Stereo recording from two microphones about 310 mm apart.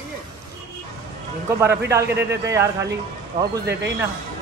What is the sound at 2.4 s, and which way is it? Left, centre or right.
A man's voice, centre.